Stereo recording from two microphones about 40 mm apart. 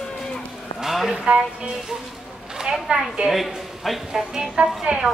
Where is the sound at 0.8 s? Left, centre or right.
Centre.